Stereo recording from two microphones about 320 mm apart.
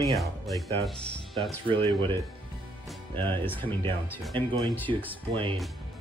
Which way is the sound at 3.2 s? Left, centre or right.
Centre.